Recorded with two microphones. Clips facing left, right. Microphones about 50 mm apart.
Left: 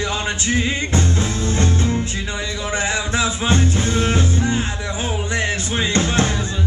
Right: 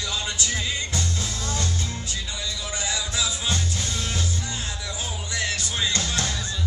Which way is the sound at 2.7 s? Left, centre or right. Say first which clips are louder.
Left 9 dB; left.